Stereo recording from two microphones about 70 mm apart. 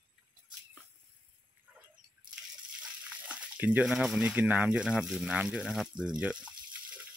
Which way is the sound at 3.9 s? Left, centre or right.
Centre.